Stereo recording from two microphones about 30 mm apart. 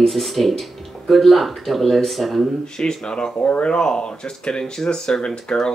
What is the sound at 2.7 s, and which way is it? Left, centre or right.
Speech, left.